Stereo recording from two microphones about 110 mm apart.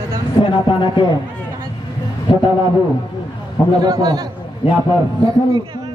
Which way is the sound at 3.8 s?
35° right (ahead or behind).